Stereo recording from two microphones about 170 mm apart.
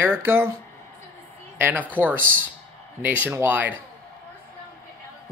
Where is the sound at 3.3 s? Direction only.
15° right (ahead or behind).